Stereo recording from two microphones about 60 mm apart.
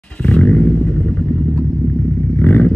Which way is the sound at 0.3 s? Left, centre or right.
Left.